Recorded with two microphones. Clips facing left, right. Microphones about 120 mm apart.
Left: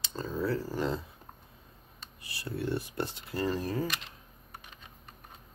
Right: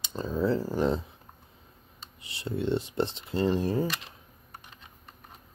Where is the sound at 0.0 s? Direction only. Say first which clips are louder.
Right 4 dB; 20° right (ahead or behind).